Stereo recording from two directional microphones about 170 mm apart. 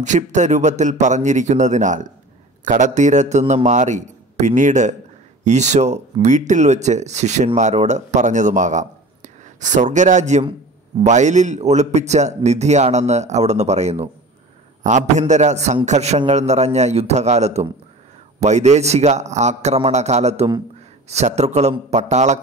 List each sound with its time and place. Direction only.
0.0 s a man's voice: 45° right (ahead or behind)